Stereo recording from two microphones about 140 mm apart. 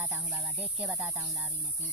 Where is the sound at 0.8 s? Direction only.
5° right (ahead or behind).